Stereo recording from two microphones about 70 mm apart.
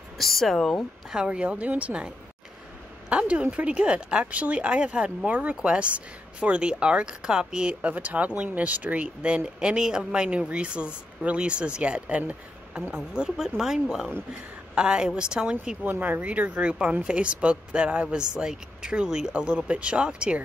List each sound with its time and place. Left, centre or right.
0.2 s speech: centre
1.1 s speech: centre
15.8 s speech: right